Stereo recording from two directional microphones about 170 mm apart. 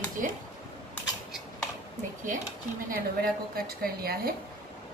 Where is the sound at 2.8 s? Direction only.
60° right (ahead or behind).